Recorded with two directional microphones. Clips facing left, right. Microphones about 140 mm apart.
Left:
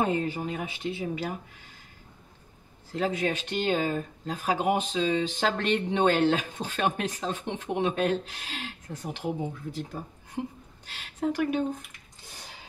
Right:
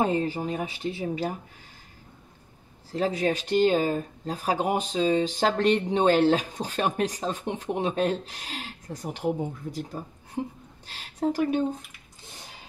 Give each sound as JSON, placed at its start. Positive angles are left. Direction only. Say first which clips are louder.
{"t": 0.0, "sound": "speech", "louder": "right 2 dB", "side_deg": -35}
{"t": 2.9, "sound": "speech", "louder": "right 2 dB", "side_deg": -35}
{"t": 10.9, "sound": "speech", "louder": "right 2 dB", "side_deg": -35}